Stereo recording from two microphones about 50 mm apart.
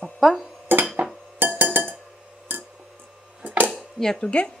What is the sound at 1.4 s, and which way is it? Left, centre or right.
Chink, right.